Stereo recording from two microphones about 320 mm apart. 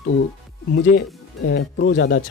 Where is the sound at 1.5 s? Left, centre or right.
Left.